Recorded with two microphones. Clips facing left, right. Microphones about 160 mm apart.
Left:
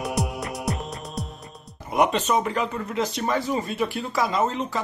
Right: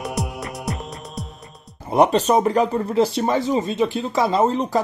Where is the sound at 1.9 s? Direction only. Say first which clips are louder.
Right 5 dB; 35° right (ahead or behind).